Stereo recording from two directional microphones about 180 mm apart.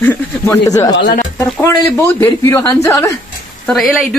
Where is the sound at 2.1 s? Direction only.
15° left (ahead or behind).